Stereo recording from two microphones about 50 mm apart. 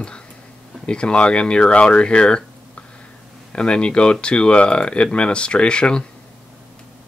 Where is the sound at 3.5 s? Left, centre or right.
Centre.